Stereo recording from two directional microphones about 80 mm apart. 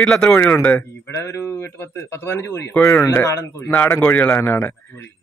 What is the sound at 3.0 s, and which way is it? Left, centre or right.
Speech, left.